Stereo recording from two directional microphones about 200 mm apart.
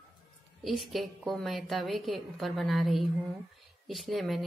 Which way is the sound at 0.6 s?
Centre (ahead or behind).